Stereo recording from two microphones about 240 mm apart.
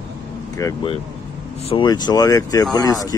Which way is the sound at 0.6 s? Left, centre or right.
Centre.